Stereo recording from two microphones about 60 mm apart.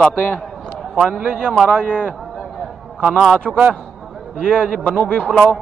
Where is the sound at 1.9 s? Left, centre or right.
Left.